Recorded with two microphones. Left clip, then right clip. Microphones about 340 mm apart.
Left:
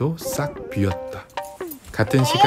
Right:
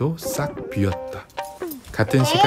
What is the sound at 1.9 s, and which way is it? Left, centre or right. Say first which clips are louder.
Speech: right 1 dB; centre.